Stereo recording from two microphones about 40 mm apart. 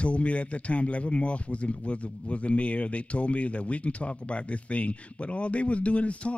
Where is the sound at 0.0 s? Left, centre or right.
Left.